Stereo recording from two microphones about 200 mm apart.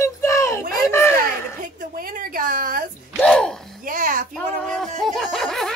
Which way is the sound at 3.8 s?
40° right (ahead or behind).